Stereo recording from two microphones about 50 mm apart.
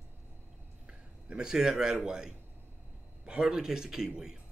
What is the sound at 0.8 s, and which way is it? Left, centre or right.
Speech, centre.